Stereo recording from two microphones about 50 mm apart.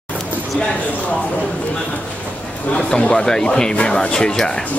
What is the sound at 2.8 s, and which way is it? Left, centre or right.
Speech, centre.